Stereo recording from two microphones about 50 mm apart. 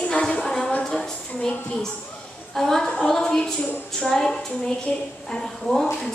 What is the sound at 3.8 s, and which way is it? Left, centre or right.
A woman's voice, centre.